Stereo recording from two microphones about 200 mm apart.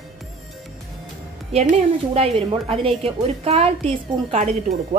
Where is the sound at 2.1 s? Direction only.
30° right (ahead or behind).